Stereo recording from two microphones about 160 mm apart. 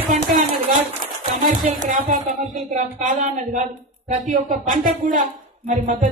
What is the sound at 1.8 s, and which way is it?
Speech, 50° right (ahead or behind).